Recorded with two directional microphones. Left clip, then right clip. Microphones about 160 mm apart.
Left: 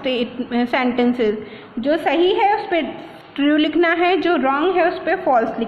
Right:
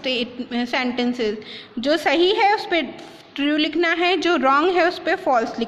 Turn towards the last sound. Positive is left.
turn(degrees=-40)  # may be behind; listen again after turning